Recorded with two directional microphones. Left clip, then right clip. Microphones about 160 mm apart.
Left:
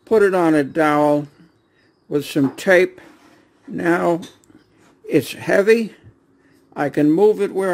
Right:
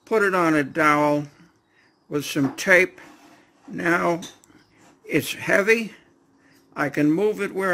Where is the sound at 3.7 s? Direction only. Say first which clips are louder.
Left 4 dB; 40° left (ahead or behind).